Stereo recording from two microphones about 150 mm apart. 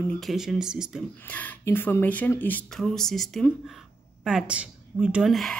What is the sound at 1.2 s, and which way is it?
Speech, 10° left (ahead or behind).